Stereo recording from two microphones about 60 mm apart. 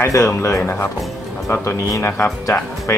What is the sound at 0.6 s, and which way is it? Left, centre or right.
Speech, left.